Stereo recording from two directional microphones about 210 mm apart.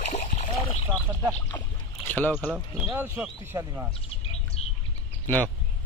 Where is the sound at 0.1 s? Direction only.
30° left (ahead or behind).